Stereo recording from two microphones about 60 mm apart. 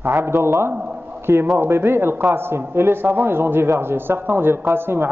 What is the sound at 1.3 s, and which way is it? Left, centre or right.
A man's voice, right.